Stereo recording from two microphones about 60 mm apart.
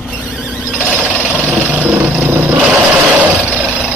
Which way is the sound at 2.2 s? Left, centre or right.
Right.